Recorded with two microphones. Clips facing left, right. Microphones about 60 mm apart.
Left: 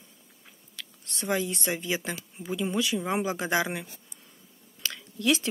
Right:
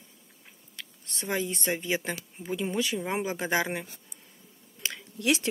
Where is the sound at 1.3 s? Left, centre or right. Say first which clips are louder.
Left 1 dB; right.